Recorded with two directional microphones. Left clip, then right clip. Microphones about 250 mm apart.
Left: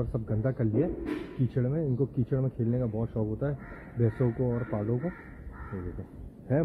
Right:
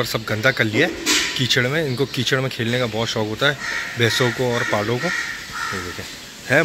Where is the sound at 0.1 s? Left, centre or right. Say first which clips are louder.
Right 14 dB; right.